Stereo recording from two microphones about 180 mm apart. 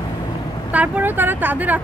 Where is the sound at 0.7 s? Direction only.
10° right (ahead or behind).